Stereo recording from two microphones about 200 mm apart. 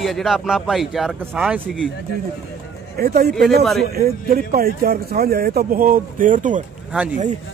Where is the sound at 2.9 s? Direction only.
50° right (ahead or behind).